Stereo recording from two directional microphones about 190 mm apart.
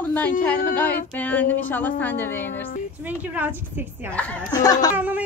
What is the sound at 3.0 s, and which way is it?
A woman's voice, 10° right (ahead or behind).